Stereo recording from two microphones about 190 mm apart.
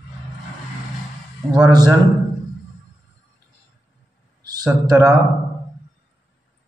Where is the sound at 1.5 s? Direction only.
20° right (ahead or behind).